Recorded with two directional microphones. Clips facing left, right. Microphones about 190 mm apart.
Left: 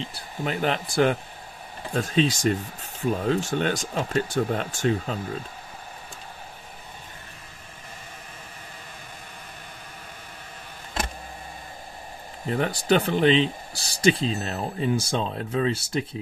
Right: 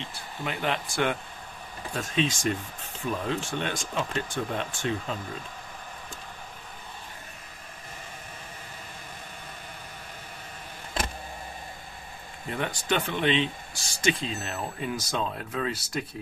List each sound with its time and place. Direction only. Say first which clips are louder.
0.4 s speech: left 4 dB; 40° left (ahead or behind)
2.0 s speech: left 5 dB; 35° left (ahead or behind)
12.4 s speech: left 6 dB; 35° left (ahead or behind)